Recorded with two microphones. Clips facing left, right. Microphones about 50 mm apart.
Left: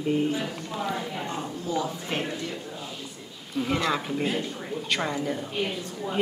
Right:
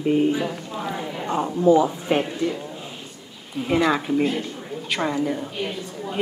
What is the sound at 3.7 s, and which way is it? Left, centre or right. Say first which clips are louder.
A woman's voice: right 7 dB; centre.